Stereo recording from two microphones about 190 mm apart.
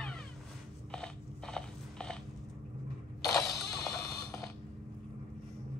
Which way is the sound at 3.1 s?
15° left (ahead or behind).